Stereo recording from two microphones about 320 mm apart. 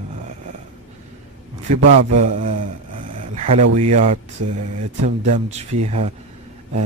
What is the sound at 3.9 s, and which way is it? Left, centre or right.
Speech, centre.